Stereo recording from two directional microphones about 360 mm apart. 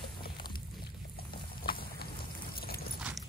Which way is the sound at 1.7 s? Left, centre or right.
Left.